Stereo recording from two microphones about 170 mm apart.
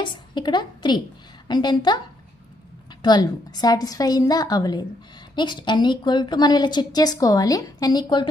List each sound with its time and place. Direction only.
0.0 s a woman's voice: 25° left (ahead or behind)
3.0 s a woman's voice: 25° left (ahead or behind)